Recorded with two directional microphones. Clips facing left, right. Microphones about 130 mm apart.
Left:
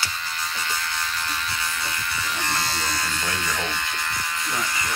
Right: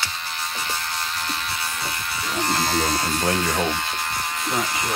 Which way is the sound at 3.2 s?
40° right (ahead or behind).